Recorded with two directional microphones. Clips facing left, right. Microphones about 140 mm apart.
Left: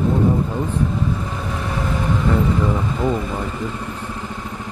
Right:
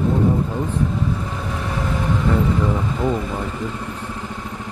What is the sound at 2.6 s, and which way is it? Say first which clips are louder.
Vehicle: left 1 dB; 20° left (ahead or behind).